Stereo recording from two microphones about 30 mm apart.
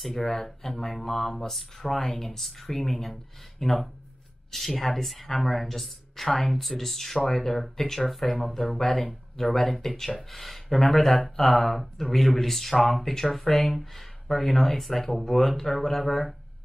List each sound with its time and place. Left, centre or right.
0.0 s speech: centre